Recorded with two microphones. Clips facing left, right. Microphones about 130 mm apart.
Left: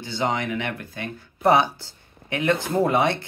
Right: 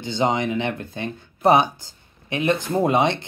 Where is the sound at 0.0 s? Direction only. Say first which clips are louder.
Right 4 dB; 20° right (ahead or behind).